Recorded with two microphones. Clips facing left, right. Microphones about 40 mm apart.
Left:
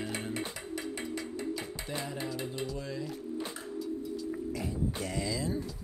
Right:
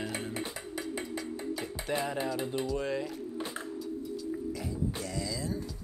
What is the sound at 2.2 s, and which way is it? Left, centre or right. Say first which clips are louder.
Speech: right 4 dB; centre.